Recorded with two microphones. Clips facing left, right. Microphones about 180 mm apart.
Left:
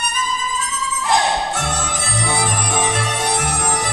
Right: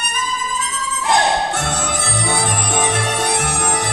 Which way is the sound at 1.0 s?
55° right (ahead or behind).